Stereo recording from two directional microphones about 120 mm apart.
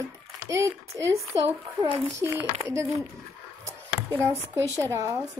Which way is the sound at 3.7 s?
20° right (ahead or behind).